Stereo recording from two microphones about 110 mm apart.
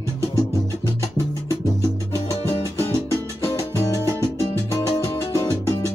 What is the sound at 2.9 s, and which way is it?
Music, 25° left (ahead or behind).